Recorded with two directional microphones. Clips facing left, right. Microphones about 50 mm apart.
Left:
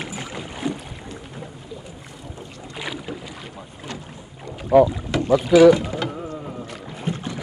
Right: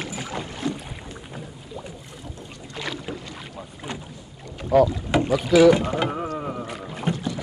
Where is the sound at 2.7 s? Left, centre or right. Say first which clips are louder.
Even; centre.